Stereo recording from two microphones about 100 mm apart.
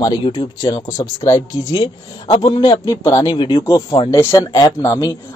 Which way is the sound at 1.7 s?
60° left (ahead or behind).